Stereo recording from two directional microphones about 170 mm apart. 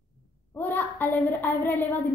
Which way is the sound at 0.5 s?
10° left (ahead or behind).